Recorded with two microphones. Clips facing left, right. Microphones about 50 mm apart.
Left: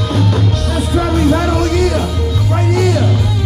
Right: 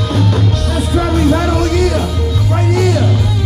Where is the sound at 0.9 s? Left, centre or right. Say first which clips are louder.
Even; left.